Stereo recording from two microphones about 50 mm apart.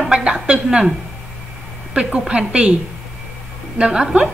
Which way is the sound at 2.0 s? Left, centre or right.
Right.